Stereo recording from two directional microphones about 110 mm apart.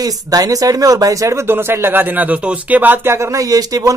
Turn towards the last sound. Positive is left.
turn(degrees=-35)  # may be behind; listen again after turning